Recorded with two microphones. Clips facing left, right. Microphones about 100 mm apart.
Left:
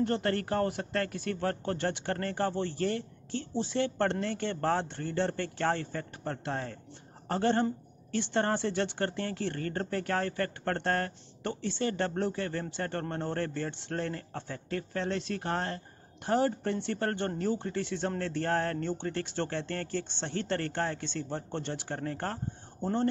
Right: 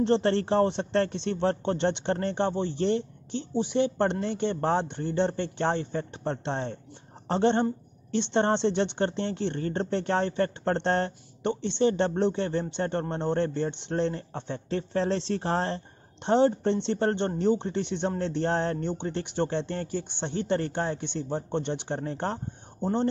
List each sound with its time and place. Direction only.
0.0 s speech: 25° right (ahead or behind)